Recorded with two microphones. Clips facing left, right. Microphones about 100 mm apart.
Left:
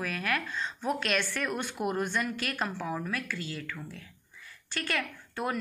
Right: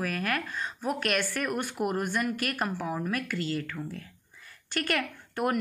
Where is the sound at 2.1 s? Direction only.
50° right (ahead or behind).